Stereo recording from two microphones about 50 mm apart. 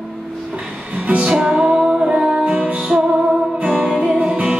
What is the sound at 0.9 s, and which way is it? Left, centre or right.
Music, right.